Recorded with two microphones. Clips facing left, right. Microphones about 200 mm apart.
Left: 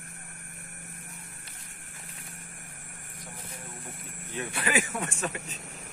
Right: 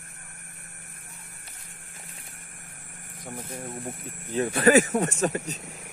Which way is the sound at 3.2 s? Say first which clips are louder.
Right 10 dB; 45° right (ahead or behind).